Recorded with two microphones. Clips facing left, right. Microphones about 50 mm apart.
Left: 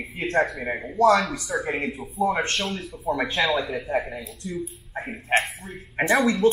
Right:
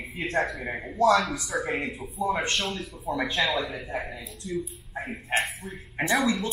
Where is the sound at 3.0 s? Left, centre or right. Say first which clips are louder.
Left 4 dB; left.